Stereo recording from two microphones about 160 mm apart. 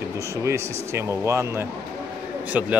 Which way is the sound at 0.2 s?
20° right (ahead or behind).